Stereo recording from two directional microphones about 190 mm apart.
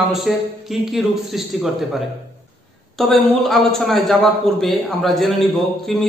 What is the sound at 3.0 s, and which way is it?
A man's voice, centre (ahead or behind).